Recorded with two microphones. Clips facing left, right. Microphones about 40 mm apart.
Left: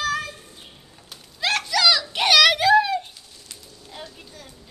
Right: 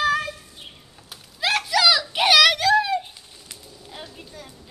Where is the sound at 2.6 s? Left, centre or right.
Centre.